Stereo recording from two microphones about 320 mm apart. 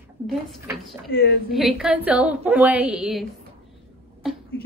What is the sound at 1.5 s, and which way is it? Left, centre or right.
A woman's voice, centre.